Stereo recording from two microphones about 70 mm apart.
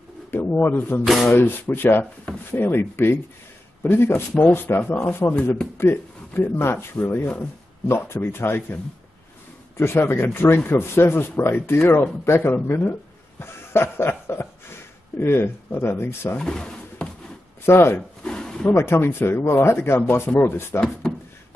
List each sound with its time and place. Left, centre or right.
0.3 s speech: left
1.0 s a sound: centre
1.3 s speech: left
9.8 s speech: left
13.4 s a sound: left
15.1 s speech: left
16.3 s drawer open or close: centre
17.6 s speech: left
17.9 s a sound: centre
18.7 s speech: left